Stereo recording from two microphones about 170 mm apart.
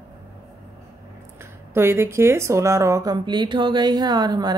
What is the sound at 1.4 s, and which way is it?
Speech, 15° right (ahead or behind).